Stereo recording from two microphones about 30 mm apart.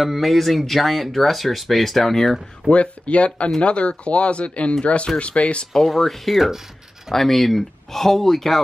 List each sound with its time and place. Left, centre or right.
0.0 s speech: centre
2.7 s speech: left
5.7 s speech: centre
7.1 s speech: centre